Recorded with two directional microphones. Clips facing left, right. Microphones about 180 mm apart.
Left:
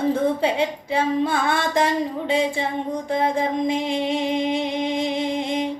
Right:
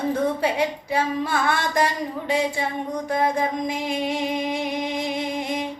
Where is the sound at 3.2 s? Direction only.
25° left (ahead or behind).